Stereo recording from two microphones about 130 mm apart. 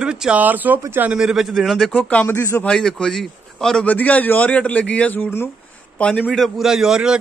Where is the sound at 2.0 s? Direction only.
10° left (ahead or behind).